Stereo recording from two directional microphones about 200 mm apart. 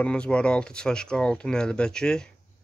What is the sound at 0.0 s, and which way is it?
Speech, 5° left (ahead or behind).